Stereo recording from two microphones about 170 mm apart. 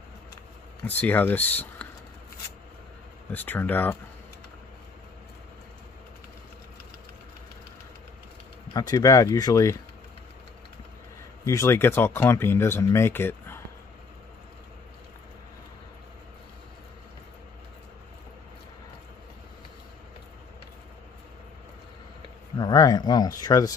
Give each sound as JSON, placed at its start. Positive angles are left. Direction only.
{"t": 0.8, "sound": "speech", "side_deg": 10}
{"t": 3.3, "sound": "speech", "side_deg": 10}
{"t": 8.7, "sound": "speech", "side_deg": 20}
{"t": 11.4, "sound": "speech", "side_deg": 15}
{"t": 22.6, "sound": "speech", "side_deg": 20}